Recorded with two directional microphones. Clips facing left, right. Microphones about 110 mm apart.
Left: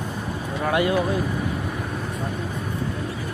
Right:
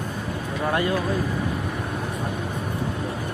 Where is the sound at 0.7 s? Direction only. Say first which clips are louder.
Left 3 dB; 15° left (ahead or behind).